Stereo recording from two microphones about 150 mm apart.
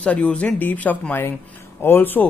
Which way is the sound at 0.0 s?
10° left (ahead or behind).